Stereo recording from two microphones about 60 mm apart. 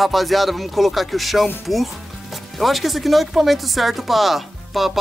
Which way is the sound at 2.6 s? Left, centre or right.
Centre.